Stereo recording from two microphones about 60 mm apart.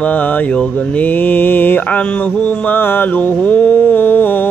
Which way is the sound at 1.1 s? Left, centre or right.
Left.